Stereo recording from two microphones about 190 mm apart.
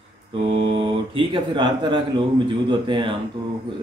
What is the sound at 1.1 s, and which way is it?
Speech, 25° right (ahead or behind).